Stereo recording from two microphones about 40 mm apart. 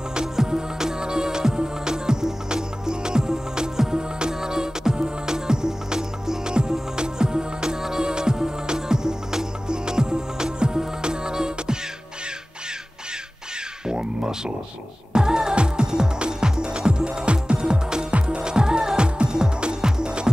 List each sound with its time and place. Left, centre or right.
0.1 s music: centre
13.8 s music: centre